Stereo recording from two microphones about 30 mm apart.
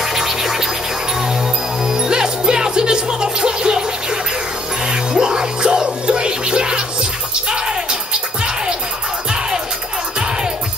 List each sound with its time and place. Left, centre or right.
0.0 s music: centre
1.9 s music: right
5.1 s music: right